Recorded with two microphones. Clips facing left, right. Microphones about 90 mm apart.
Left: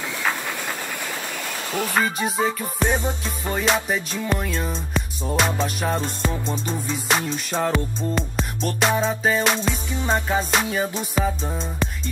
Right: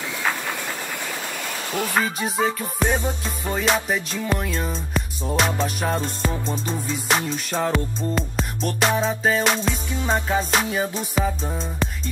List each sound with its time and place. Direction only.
2.0 s music: centre (ahead or behind)
2.9 s music: 20° left (ahead or behind)
3.3 s music: centre (ahead or behind)